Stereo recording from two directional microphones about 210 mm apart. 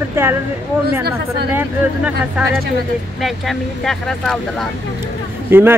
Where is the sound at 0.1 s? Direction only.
10° right (ahead or behind).